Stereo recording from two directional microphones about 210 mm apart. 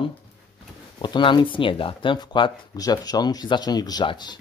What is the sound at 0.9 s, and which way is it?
Speech, 20° left (ahead or behind).